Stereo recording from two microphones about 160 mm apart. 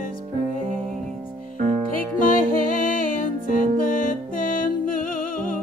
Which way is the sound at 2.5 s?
60° left (ahead or behind).